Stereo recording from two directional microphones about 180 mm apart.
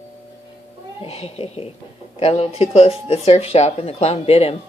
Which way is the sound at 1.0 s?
35° left (ahead or behind).